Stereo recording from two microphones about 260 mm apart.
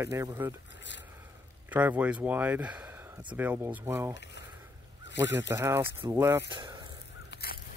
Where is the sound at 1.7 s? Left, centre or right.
Centre.